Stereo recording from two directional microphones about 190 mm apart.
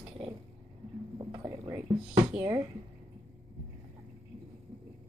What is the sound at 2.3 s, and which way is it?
Speech, 15° right (ahead or behind).